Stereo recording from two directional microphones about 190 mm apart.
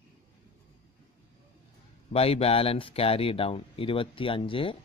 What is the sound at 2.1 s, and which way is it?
Speech, 30° left (ahead or behind).